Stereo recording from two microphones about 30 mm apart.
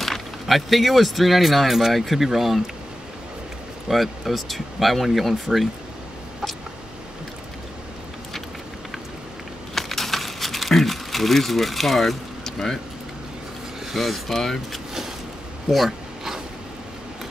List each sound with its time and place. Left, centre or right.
0.0 s speech: centre
3.9 s speech: centre
9.8 s a sound: centre
12.4 s speech: centre
13.9 s speech: centre
15.7 s a sound: centre